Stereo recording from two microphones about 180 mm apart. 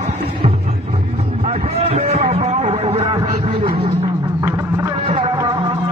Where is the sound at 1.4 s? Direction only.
35° right (ahead or behind).